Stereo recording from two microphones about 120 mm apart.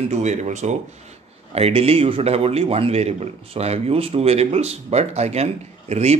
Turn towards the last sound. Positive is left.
turn(degrees=-65)  # may be behind; listen again after turning